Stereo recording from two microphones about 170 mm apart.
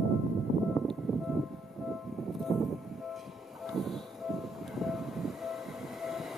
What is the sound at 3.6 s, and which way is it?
Train, centre (ahead or behind).